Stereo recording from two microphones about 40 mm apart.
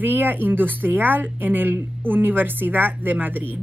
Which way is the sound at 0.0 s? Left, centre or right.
Right.